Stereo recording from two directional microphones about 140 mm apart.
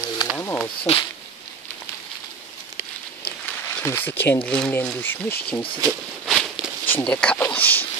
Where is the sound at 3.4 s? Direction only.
15° left (ahead or behind).